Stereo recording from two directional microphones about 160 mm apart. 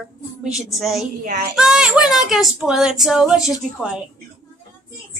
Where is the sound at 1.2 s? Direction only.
70° right (ahead or behind).